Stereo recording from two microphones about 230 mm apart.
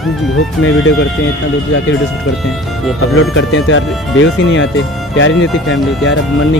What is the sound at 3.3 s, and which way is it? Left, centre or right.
Speech, left.